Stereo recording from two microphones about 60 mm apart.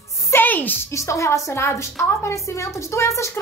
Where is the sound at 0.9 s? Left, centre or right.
Left.